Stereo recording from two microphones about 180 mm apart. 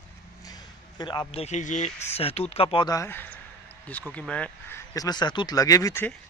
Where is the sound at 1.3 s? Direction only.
35° left (ahead or behind); by 6.0 s 20° left (ahead or behind).